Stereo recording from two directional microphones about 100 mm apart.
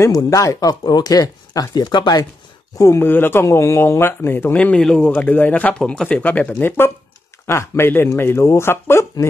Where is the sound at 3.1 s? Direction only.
20° left (ahead or behind).